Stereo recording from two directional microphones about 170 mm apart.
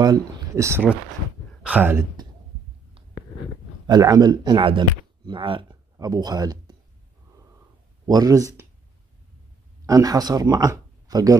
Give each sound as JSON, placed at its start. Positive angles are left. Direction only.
{"t": 0.0, "sound": "speech", "side_deg": -20}
{"t": 3.8, "sound": "speech", "side_deg": -20}
{"t": 8.1, "sound": "speech", "side_deg": -20}
{"t": 9.8, "sound": "speech", "side_deg": -20}